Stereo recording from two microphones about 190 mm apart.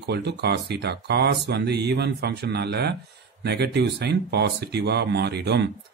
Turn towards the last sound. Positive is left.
turn(degrees=-60)  # may be behind; listen again after turning